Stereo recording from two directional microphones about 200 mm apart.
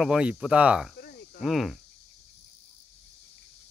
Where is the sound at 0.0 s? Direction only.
5° right (ahead or behind).